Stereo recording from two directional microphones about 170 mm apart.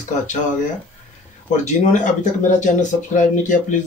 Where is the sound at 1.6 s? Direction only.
45° left (ahead or behind).